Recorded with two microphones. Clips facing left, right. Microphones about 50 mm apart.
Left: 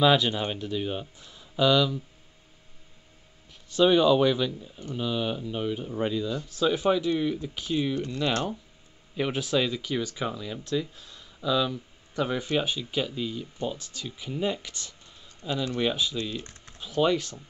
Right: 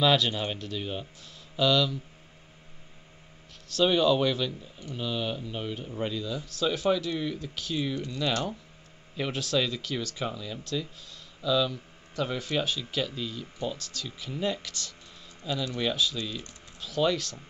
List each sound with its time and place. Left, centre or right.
0.0 s speech: centre
3.7 s speech: centre
7.9 s speech: left
9.1 s speech: centre